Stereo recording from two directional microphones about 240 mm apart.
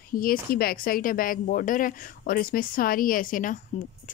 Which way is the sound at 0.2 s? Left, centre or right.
Left.